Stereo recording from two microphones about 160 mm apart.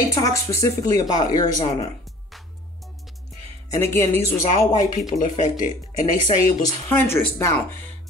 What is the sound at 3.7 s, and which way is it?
Speech, 15° left (ahead or behind).